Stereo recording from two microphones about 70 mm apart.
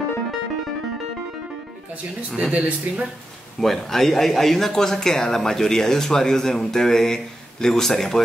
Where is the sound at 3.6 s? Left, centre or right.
Centre.